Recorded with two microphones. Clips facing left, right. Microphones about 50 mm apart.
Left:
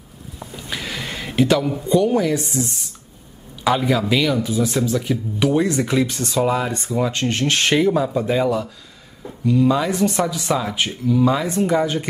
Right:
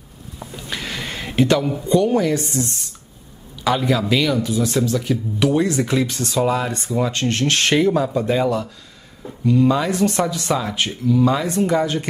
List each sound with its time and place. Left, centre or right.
0.4 s a sound: centre
3.6 s speech: centre
4.4 s speech: centre
7.2 s speech: centre